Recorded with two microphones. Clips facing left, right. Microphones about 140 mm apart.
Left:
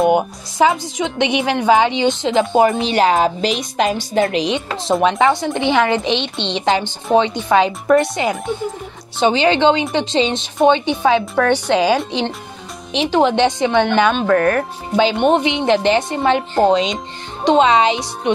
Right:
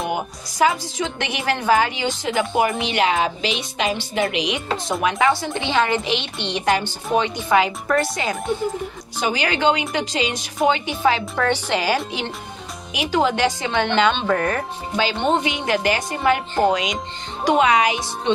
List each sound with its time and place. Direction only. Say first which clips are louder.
0.0 s speech: left 10 dB; 25° left (ahead or behind)
2.9 s a woman's voice: left 5 dB; 40° left (ahead or behind)
11.6 s a woman's voice: left 6 dB; 5° right (ahead or behind)
12.9 s speech: left 5 dB; 25° left (ahead or behind)
14.2 s speech: left 6 dB; 5° right (ahead or behind)
15.0 s speech: left 6 dB; 20° left (ahead or behind)